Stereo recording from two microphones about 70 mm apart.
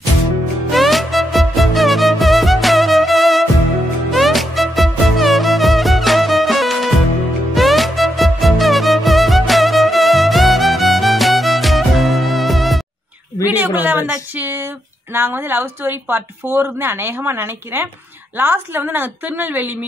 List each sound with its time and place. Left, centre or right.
0.7 s music: centre
13.6 s a sound: right
15.1 s a woman's voice: right